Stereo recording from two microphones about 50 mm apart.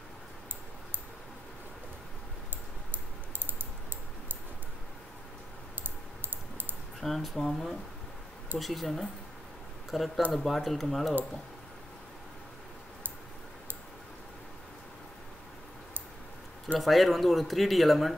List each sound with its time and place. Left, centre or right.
2.9 s typing: right
5.9 s typing: right
7.0 s speech: centre
16.7 s speech: centre